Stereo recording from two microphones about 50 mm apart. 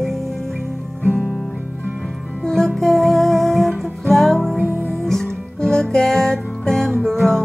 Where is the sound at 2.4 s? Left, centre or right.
Centre.